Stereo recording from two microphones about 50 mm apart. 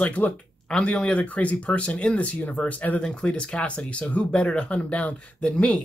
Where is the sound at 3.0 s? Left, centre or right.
Centre.